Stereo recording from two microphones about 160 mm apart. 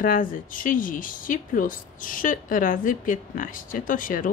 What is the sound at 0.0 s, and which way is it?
Speech, 60° left (ahead or behind).